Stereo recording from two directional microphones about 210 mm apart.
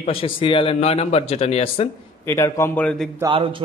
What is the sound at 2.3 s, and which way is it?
Speech, 10° left (ahead or behind).